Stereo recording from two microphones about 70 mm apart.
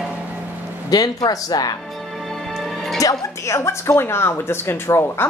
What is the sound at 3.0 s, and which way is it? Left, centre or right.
Speech, left.